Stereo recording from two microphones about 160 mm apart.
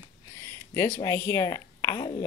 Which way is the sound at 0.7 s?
15° left (ahead or behind).